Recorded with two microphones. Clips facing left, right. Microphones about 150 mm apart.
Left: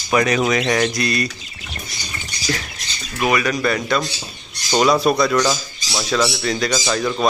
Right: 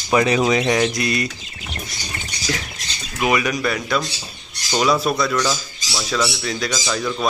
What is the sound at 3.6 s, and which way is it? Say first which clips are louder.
Speech: left 2 dB; 5° right (ahead or behind).